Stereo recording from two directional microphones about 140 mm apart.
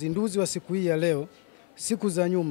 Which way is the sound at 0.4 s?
10° left (ahead or behind).